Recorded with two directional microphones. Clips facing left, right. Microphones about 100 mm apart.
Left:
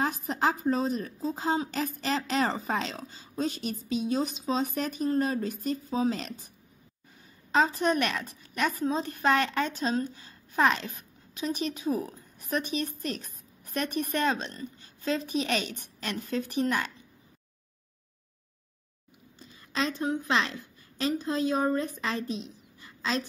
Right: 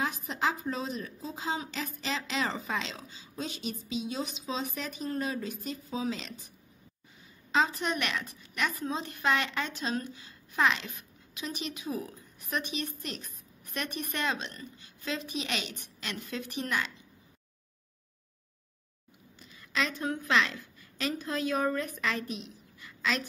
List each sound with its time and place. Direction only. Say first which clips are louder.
0.0 s a woman's voice: left 4 dB; 45° left (ahead or behind)
7.5 s a woman's voice: left 4 dB; 40° left (ahead or behind)
19.4 s a sound: left 2 dB; 30° left (ahead or behind)
20.1 s a woman's voice: left 1 dB; 25° left (ahead or behind)